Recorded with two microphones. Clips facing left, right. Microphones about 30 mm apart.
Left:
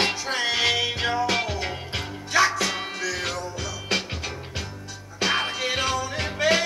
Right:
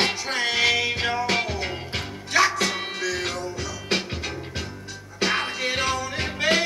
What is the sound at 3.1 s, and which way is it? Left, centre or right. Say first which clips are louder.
Music: right 1 dB; centre.